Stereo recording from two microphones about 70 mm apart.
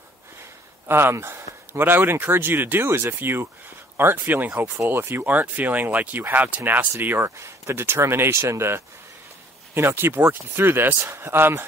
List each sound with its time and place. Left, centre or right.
0.4 s speech: right